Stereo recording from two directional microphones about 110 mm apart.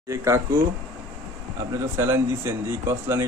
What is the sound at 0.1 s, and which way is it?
Speech, 30° right (ahead or behind).